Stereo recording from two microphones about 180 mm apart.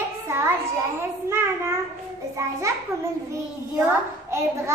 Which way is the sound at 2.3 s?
15° right (ahead or behind).